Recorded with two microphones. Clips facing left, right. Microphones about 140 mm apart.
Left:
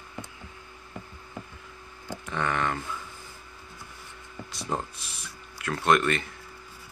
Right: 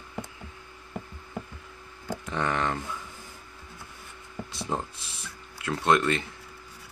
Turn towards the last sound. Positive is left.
turn(degrees=-20)  # may be behind; listen again after turning